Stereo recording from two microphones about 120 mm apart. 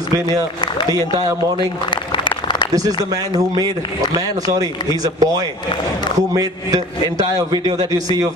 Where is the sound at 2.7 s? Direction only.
30° right (ahead or behind).